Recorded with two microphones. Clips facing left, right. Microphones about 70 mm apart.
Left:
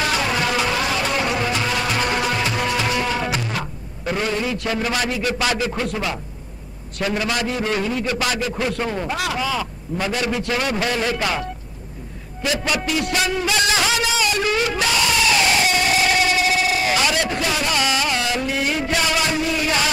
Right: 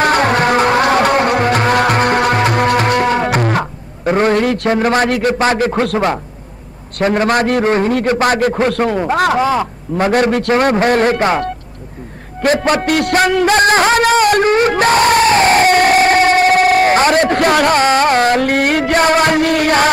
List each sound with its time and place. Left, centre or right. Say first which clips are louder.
0.0 s music: right 9 dB; right
4.3 s a man's voice: right 10 dB; right
4.6 s a man's voice: right 9 dB; right
7.0 s a man's voice: right 9 dB; right
7.6 s a man's voice: right 9 dB; right